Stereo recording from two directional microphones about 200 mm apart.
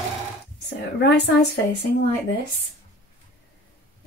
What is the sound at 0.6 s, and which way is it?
Speech, 60° left (ahead or behind).